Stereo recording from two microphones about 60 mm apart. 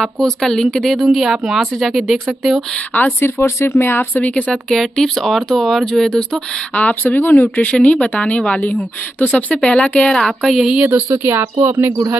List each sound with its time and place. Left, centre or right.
0.0 s a woman's voice: centre
3.2 s speech: left
4.2 s a woman's voice: centre
5.0 s a woman's voice: centre
6.8 s speech: left
7.8 s a woman's voice: left; by 10.6 s centre
10.8 s speech: right
11.1 s speech: right